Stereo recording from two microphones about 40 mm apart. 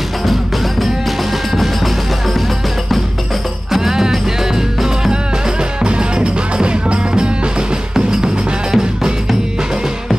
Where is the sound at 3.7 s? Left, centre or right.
Centre.